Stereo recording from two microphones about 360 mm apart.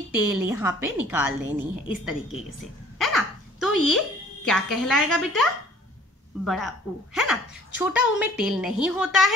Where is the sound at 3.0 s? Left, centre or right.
Centre.